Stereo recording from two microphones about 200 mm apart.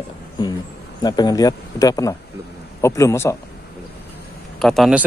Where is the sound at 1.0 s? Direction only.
20° left (ahead or behind).